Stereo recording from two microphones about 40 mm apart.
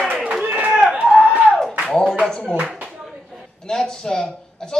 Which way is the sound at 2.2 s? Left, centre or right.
Centre.